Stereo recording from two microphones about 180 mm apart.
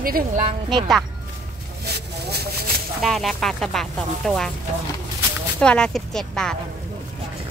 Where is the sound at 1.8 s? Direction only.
65° right (ahead or behind).